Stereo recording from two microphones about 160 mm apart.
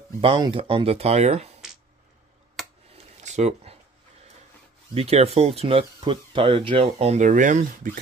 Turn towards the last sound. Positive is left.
turn(degrees=-55)  # may be behind; listen again after turning